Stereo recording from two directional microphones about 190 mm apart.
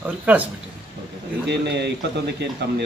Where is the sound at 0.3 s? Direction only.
10° right (ahead or behind).